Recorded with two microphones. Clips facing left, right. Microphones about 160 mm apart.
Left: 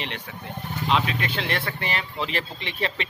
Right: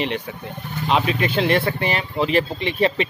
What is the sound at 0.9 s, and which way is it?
Speech, 15° right (ahead or behind).